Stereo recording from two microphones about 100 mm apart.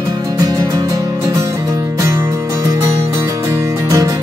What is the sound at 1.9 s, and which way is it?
Music, 35° right (ahead or behind).